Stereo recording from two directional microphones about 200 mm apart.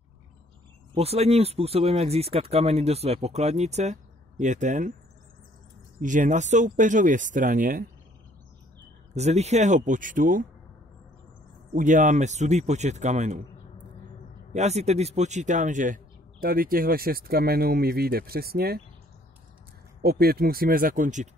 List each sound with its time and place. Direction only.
0.9 s speech: 30° right (ahead or behind)
5.9 s speech: 40° right (ahead or behind)
9.1 s speech: 35° right (ahead or behind)
11.7 s speech: 40° right (ahead or behind)
14.5 s a man's voice: 35° right (ahead or behind); by 18.8 s 50° right (ahead or behind)
20.0 s a man's voice: 50° right (ahead or behind)